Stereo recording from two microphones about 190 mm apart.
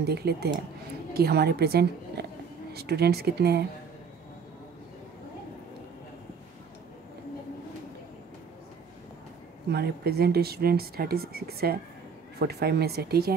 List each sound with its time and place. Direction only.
0.0 s a woman's voice: 55° right (ahead or behind)
9.7 s speech: 55° right (ahead or behind)